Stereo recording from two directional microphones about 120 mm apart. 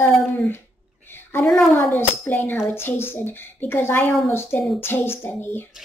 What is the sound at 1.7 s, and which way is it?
Speech, 15° left (ahead or behind).